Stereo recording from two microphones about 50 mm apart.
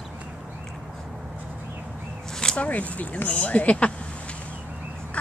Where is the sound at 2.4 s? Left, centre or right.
Left.